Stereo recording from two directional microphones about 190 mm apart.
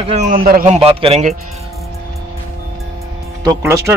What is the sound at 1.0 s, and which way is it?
Speech, 35° right (ahead or behind).